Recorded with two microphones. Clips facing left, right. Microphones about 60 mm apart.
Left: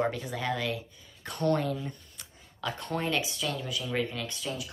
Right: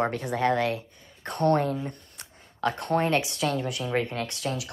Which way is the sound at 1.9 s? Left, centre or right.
Right.